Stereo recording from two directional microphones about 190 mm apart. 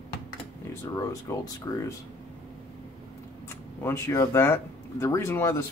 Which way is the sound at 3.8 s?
15° left (ahead or behind).